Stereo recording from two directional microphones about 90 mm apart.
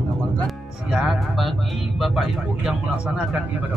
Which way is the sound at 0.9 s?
5° right (ahead or behind).